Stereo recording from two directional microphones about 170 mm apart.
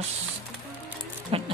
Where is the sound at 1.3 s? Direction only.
35° right (ahead or behind).